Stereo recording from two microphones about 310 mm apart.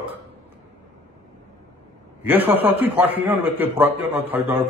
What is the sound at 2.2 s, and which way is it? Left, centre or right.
A man's voice, centre.